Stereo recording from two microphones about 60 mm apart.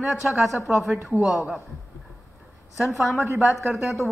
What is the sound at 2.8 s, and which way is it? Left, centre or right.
Speech, centre.